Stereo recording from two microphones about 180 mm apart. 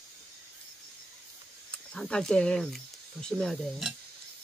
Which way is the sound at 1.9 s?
5° left (ahead or behind).